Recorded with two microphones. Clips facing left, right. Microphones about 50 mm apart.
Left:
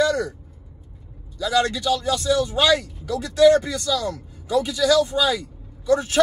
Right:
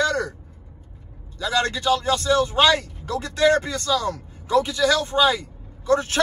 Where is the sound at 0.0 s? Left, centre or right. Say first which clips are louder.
Left 2 dB; right.